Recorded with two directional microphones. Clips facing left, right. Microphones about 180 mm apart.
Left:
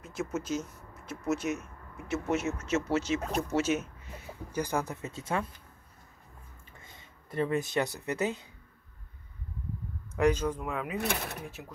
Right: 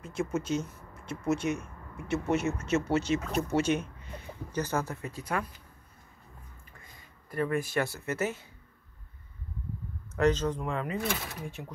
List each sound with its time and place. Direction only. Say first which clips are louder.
0.0 s speech: right 3 dB; centre (ahead or behind); by 5.5 s 25° left (ahead or behind)
6.8 s speech: left 1 dB; 25° left (ahead or behind)
10.1 s speech: even; 10° left (ahead or behind)
11.0 s speech: even; 65° left (ahead or behind)